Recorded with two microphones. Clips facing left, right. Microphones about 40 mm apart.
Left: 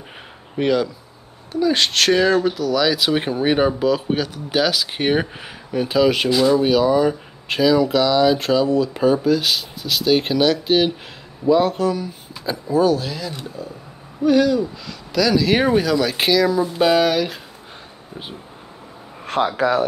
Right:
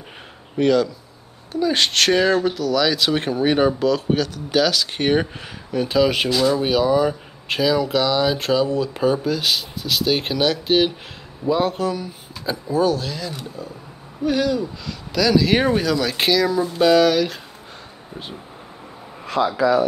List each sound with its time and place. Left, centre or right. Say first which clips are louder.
0.6 s speech: right 2 dB; centre
1.5 s speech: left 1 dB; centre
19.2 s speech: even; left